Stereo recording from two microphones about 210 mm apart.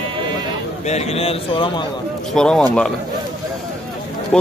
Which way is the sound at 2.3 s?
5° left (ahead or behind).